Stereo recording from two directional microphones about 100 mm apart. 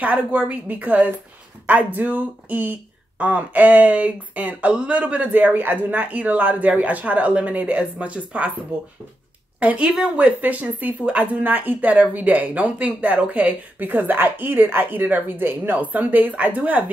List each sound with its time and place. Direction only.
0.0 s speech: 15° right (ahead or behind)
9.6 s speech: 10° right (ahead or behind)